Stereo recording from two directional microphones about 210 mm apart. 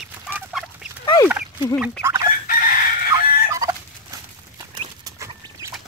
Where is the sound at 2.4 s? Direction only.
45° left (ahead or behind).